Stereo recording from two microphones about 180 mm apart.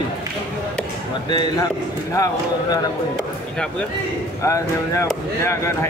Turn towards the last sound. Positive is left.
turn(degrees=15)  # may be behind; listen again after turning